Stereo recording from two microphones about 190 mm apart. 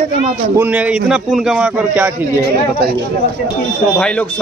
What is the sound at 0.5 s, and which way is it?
A man's voice, 10° right (ahead or behind).